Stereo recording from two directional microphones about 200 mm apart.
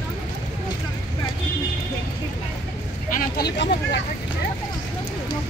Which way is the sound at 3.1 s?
50° left (ahead or behind).